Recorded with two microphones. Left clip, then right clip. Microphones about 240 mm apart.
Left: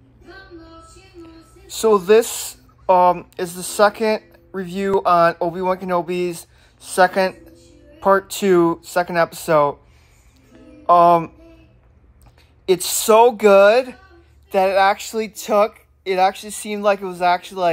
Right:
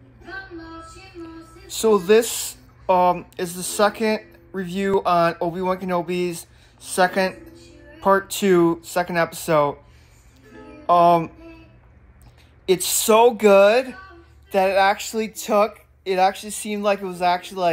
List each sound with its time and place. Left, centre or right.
0.2 s child singing: centre
1.7 s speech: left
7.5 s music: centre
8.0 s speech: left
10.9 s speech: left
13.0 s speech: left